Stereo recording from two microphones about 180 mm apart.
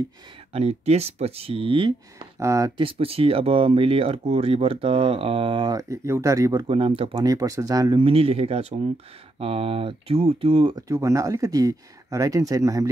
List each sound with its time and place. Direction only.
0.5 s speech: 35° right (ahead or behind); by 2.7 s 15° right (ahead or behind)
2.8 s speech: 30° right (ahead or behind)
10.9 s speech: 20° right (ahead or behind)